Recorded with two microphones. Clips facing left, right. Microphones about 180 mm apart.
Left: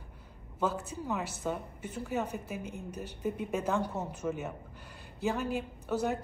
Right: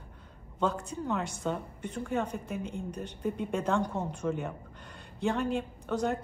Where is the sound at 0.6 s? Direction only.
5° left (ahead or behind).